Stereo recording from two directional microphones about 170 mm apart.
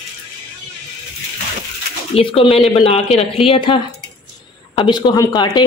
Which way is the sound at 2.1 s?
35° left (ahead or behind).